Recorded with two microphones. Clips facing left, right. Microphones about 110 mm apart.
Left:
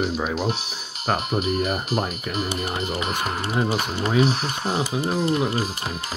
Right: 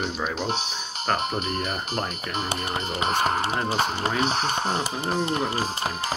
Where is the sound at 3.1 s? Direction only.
40° right (ahead or behind).